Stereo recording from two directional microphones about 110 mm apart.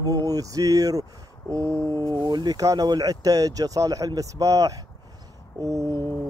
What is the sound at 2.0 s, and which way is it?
Speech, 40° right (ahead or behind).